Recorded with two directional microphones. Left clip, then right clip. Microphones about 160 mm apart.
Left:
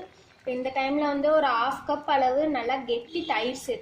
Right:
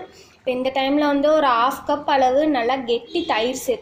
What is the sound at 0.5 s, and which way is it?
A woman's voice, 20° right (ahead or behind).